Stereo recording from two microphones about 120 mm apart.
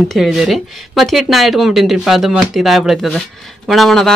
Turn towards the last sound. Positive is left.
turn(degrees=5)  # may be behind; listen again after turning